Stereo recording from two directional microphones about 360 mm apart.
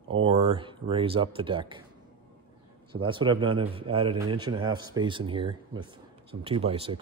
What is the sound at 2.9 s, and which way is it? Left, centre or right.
A man's voice, centre.